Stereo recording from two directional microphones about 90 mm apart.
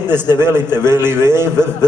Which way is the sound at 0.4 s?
25° right (ahead or behind).